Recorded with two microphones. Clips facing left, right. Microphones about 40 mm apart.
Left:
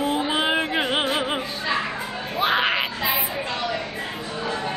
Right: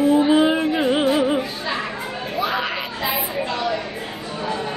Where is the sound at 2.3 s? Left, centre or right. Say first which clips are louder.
Left 3 dB; left.